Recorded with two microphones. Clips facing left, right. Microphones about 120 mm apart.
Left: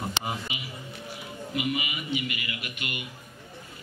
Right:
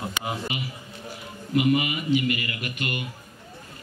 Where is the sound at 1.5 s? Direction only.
45° right (ahead or behind).